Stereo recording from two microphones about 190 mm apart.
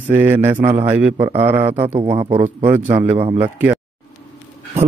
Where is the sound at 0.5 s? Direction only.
35° right (ahead or behind).